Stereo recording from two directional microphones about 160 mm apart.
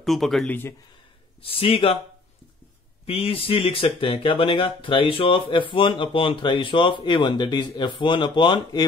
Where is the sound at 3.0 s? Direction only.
35° left (ahead or behind).